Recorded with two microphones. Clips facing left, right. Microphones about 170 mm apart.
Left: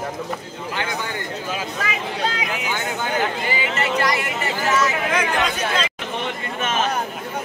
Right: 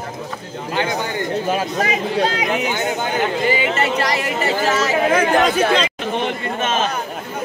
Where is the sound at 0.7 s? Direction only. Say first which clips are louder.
Right 5 dB; 35° right (ahead or behind).